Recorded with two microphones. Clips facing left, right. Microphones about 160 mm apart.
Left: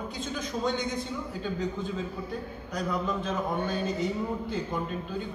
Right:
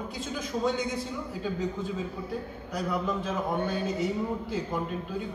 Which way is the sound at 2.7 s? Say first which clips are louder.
Even; 5° right (ahead or behind).